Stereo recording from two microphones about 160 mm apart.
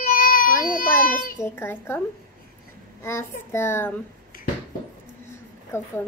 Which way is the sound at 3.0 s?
15° left (ahead or behind).